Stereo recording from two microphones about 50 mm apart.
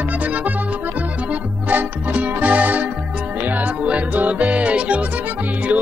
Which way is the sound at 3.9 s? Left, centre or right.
Right.